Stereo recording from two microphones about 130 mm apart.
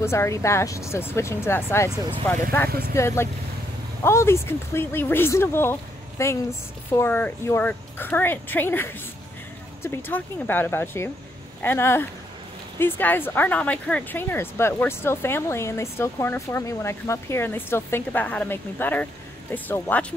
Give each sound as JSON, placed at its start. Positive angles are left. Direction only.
{"t": 0.0, "sound": "speech", "side_deg": 20}